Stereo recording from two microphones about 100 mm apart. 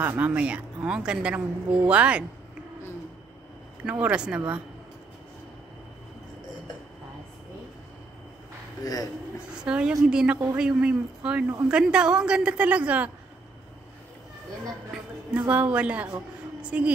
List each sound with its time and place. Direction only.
0.0 s a woman's voice: 15° right (ahead or behind)
4.0 s a woman's voice: 10° right (ahead or behind)
8.8 s speech: 35° left (ahead or behind)
9.6 s a woman's voice: 10° right (ahead or behind)
15.3 s a woman's voice: 15° right (ahead or behind)